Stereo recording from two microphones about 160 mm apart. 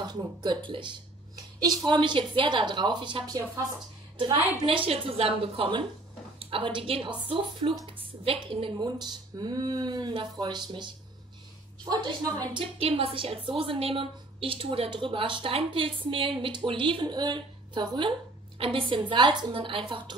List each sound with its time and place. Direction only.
0.0 s a woman's voice: 25° right (ahead or behind)
4.6 s a woman's voice: 35° right (ahead or behind)